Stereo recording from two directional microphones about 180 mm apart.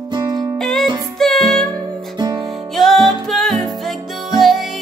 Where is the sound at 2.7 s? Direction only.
Centre (ahead or behind).